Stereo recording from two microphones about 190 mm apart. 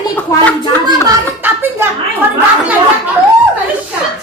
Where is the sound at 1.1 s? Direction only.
10° right (ahead or behind).